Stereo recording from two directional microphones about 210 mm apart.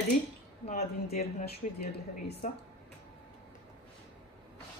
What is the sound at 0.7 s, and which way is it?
Speech, 30° left (ahead or behind).